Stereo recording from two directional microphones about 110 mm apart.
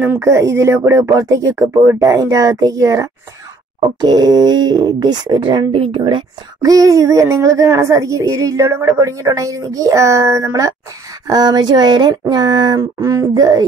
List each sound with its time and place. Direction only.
0.0 s speech: 15° right (ahead or behind)
0.3 s a woman's voice: 25° right (ahead or behind); by 6.2 s 50° right (ahead or behind)
6.6 s a woman's voice: 30° right (ahead or behind)